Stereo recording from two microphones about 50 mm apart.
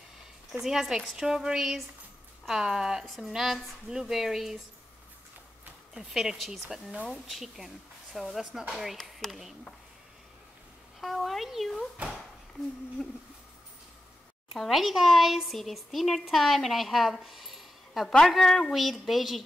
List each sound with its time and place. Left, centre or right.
0.5 s a woman's voice: centre
5.9 s a woman's voice: centre
9.2 s a child's voice: centre
11.0 s a woman's voice: centre
13.0 s a child's voice: centre
14.5 s a child's voice: centre
18.0 s a woman's voice: centre